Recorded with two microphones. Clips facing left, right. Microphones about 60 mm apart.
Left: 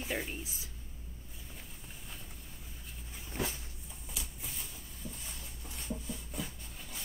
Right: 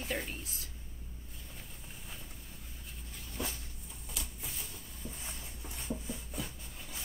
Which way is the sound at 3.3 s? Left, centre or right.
Left.